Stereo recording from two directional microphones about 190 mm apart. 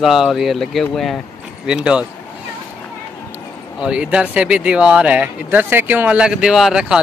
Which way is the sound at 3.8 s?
5° right (ahead or behind).